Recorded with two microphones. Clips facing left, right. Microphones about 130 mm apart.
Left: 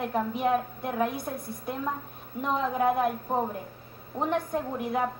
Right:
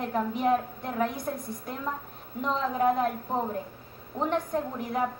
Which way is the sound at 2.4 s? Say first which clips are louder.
Even; 15° left (ahead or behind).